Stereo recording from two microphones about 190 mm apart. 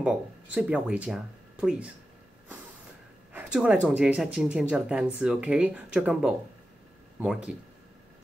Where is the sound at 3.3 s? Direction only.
5° right (ahead or behind).